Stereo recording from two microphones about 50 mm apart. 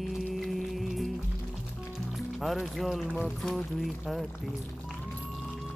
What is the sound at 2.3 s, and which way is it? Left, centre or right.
Speech, centre.